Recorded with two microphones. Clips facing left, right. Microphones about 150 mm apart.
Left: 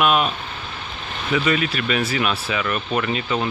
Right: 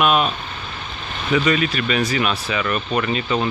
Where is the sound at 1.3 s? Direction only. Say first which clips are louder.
Right 2 dB; 5° left (ahead or behind).